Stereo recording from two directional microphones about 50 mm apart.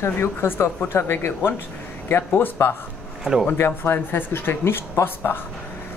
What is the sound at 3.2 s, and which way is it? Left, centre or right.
Speech, centre.